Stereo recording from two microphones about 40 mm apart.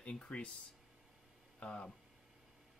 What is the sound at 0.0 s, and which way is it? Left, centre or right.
Speech, left.